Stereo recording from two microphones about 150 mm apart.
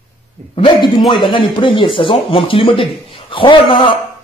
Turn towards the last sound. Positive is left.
turn(degrees=35)  # may be behind; listen again after turning